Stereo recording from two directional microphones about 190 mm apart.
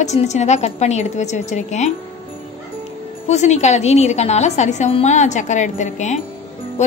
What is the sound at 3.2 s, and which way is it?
A woman's voice, 35° left (ahead or behind).